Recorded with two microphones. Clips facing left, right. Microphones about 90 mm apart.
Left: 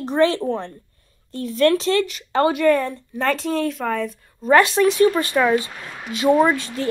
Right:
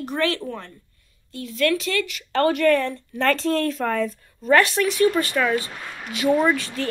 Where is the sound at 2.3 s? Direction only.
20° left (ahead or behind); by 4.1 s 5° left (ahead or behind).